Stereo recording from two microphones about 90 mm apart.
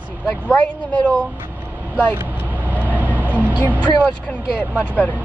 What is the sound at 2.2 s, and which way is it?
Vehicle, 20° right (ahead or behind).